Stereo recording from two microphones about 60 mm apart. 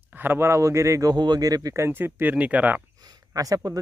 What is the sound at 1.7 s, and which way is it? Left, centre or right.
Speech, right.